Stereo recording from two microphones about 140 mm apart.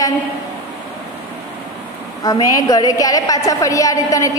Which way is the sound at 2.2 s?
25° left (ahead or behind).